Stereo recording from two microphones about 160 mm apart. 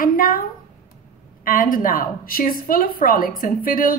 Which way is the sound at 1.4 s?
60° left (ahead or behind).